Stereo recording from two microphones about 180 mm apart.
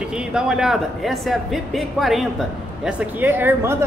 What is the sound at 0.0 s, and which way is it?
Speech, 5° right (ahead or behind).